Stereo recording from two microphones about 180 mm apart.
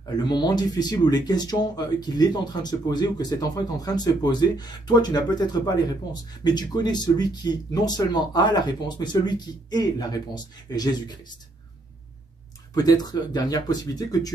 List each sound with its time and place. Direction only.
0.3 s speech: 25° left (ahead or behind)
12.7 s speech: 20° left (ahead or behind)